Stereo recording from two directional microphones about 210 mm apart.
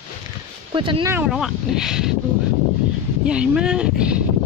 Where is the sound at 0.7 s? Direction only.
25° right (ahead or behind).